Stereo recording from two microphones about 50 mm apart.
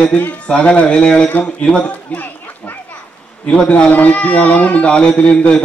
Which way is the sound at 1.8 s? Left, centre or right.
Left.